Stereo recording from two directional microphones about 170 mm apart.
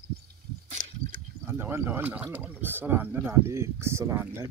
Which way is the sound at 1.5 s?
15° right (ahead or behind).